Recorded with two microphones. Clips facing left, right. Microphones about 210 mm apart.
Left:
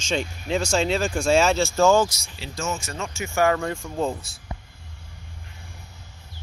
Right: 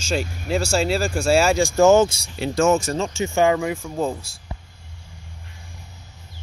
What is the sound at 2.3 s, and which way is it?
Speech, 60° right (ahead or behind).